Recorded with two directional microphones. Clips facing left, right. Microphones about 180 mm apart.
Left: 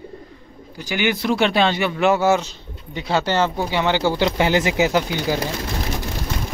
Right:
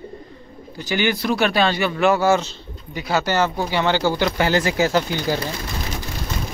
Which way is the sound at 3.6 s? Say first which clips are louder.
Even; 15° left (ahead or behind).